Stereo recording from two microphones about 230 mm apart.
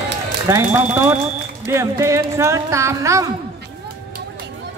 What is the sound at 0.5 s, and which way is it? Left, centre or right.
Speech, centre.